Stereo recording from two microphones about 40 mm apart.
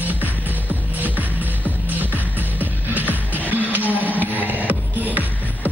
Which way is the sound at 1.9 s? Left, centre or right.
Right.